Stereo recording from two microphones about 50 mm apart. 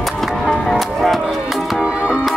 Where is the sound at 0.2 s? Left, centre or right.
Centre.